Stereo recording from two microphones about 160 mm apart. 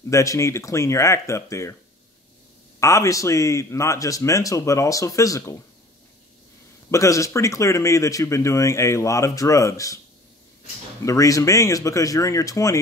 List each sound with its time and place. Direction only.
0.1 s speech: 20° left (ahead or behind)
2.8 s speech: 20° left (ahead or behind)
6.9 s speech: 20° left (ahead or behind)
11.1 s speech: 20° left (ahead or behind)